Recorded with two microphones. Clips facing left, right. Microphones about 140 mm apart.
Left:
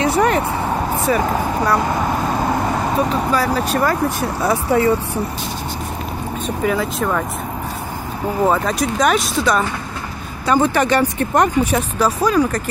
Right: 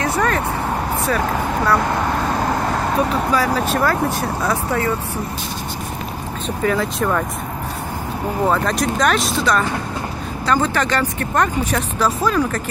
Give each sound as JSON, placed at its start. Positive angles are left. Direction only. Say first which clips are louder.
{"t": 0.0, "sound": "vehicle", "louder": "left 4 dB", "side_deg": 15}
{"t": 1.0, "sound": "speech", "louder": "left 3 dB", "side_deg": 10}
{"t": 3.3, "sound": "speech", "louder": "even", "side_deg": 5}
{"t": 4.5, "sound": "speech", "louder": "left 6 dB", "side_deg": 15}
{"t": 6.4, "sound": "speech", "louder": "even", "side_deg": 5}
{"t": 8.5, "sound": "speech", "louder": "even", "side_deg": 0}